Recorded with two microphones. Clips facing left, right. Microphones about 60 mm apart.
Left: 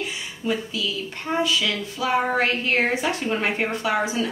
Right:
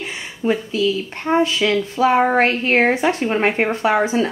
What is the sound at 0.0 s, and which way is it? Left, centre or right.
Speech, right.